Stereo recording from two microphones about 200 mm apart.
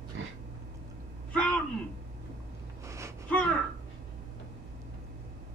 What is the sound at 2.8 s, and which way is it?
Gasp, 15° right (ahead or behind).